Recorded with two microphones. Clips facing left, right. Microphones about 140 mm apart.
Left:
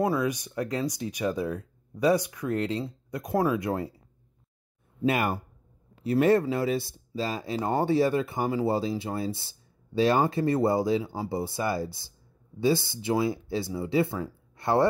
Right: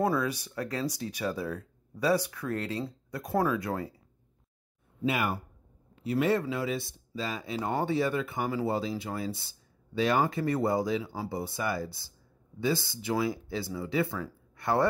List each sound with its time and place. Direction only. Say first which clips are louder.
0.0 s speech: left 2 dB; 15° left (ahead or behind)
5.0 s speech: left 4 dB; 45° left (ahead or behind); by 14.9 s 25° left (ahead or behind)